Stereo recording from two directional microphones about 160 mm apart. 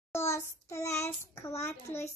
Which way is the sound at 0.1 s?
15° left (ahead or behind).